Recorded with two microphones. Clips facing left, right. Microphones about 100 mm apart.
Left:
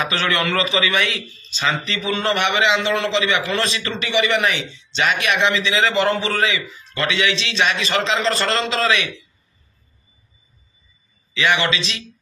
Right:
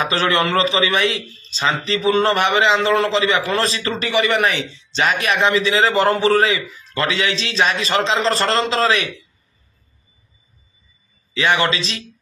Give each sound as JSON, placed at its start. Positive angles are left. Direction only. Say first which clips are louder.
{"t": 0.0, "sound": "a man's voice", "louder": "right 3 dB", "side_deg": -30}
{"t": 11.3, "sound": "a man's voice", "louder": "right 1 dB", "side_deg": -35}